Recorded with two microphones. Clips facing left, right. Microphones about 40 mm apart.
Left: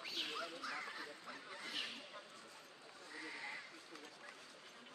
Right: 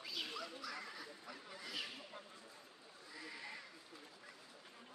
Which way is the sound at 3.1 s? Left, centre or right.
Left.